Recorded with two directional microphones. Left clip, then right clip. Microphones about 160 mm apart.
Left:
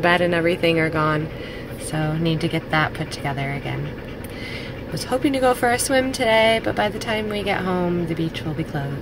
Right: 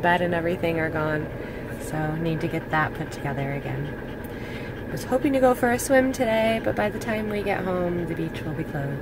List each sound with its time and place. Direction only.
0.0 s speech: 20° left (ahead or behind)
4.9 s a woman's voice: 5° left (ahead or behind)